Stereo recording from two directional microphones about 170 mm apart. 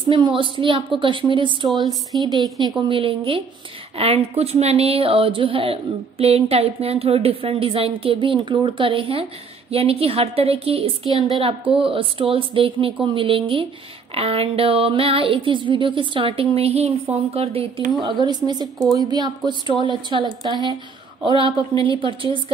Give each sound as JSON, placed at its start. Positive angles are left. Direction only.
{"t": 0.1, "sound": "a woman's voice", "side_deg": -30}